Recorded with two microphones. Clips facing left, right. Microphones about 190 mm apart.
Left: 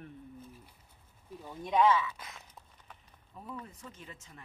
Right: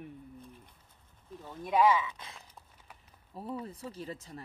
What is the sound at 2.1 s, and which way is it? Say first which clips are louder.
Speech: left 1 dB; 25° right (ahead or behind).